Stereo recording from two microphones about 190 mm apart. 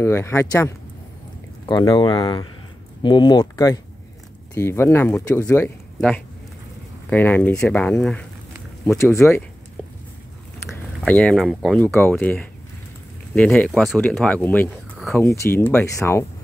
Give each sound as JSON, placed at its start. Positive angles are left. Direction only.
{"t": 0.0, "sound": "speech", "side_deg": 15}
{"t": 11.1, "sound": "speech", "side_deg": 5}
{"t": 11.8, "sound": "speech", "side_deg": 10}
{"t": 15.1, "sound": "speech", "side_deg": 15}